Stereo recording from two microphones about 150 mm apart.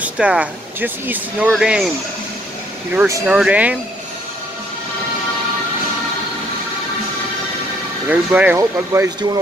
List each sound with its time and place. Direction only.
0.0 s speech: 10° right (ahead or behind)
2.9 s speech: 10° right (ahead or behind)
8.1 s speech: 10° right (ahead or behind)